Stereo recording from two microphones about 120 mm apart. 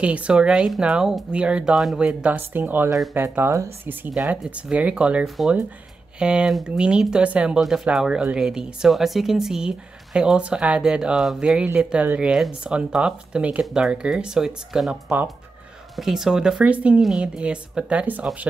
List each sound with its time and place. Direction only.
0.0 s speech: 10° right (ahead or behind)
4.1 s speech: 5° right (ahead or behind)